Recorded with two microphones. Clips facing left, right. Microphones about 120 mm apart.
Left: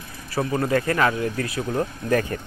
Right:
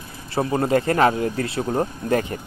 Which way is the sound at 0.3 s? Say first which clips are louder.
Right 2 dB; 25° right (ahead or behind).